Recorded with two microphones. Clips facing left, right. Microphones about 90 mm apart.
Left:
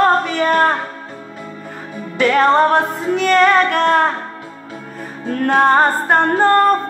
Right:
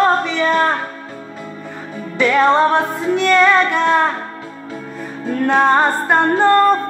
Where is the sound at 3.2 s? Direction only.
55° left (ahead or behind).